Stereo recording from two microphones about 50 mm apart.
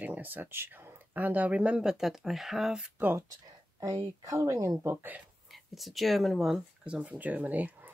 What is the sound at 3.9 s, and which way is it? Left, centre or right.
Speech, right.